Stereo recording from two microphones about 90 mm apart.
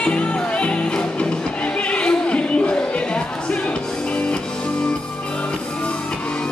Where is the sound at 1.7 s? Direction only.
10° left (ahead or behind).